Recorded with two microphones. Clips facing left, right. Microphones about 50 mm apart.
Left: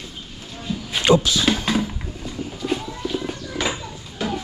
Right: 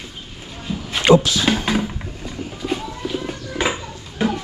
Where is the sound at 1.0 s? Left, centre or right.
Right.